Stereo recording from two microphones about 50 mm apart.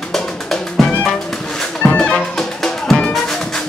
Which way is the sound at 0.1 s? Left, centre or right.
Centre.